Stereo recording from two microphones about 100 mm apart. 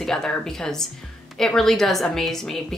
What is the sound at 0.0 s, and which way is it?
Speech, 5° left (ahead or behind).